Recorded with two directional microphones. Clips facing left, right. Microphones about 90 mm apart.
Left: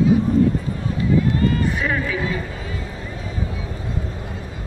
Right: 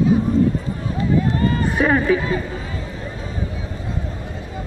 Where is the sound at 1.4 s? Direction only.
40° right (ahead or behind).